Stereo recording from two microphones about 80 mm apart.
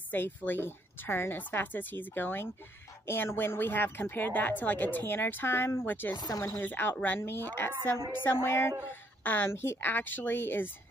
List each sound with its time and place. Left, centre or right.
0.1 s speech: left
6.3 s speech: left
6.6 s speech: left